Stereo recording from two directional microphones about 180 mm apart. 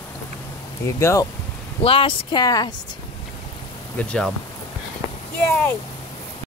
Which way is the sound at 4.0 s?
5° left (ahead or behind).